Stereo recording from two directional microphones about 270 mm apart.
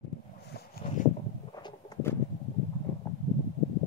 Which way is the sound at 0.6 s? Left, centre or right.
Left.